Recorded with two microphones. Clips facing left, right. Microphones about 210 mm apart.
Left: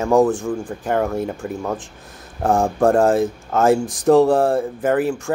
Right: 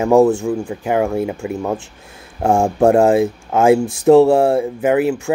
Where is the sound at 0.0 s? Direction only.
10° right (ahead or behind).